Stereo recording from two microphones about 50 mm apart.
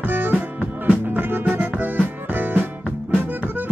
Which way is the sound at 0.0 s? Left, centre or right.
Right.